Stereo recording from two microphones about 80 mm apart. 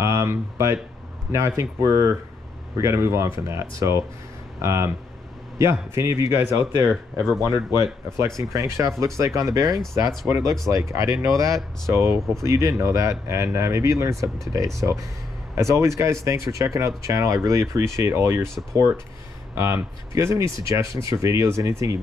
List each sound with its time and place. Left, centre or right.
0.0 s a sound: right
1.6 s speech: right
11.9 s speech: right